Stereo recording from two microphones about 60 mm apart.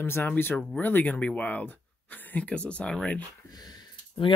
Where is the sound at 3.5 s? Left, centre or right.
Left.